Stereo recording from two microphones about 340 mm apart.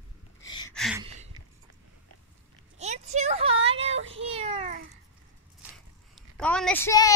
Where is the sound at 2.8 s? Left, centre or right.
Centre.